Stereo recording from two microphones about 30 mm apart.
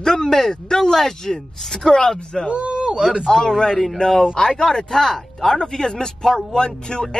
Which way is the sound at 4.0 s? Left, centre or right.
Centre.